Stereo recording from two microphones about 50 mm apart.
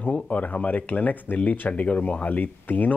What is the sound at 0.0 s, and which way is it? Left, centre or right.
Speech, left.